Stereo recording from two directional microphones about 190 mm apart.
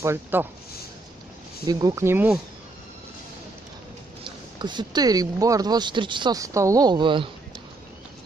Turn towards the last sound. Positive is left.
turn(degrees=-25)  # may be behind; listen again after turning